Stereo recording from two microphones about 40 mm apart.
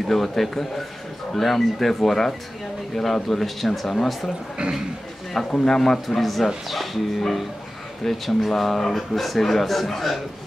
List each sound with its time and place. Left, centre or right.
0.1 s speech: centre
5.5 s speech: centre
5.8 s speech: centre